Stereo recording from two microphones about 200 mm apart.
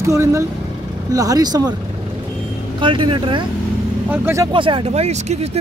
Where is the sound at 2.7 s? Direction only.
25° right (ahead or behind).